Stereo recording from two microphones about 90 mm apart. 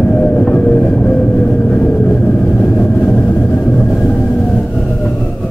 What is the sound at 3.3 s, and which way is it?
Vehicle, 15° left (ahead or behind).